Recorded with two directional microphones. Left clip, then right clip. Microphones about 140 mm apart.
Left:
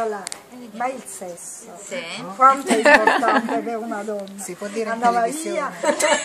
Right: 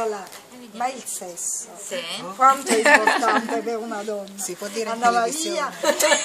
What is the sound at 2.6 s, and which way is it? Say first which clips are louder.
Speech: left 2 dB; 35° left (ahead or behind).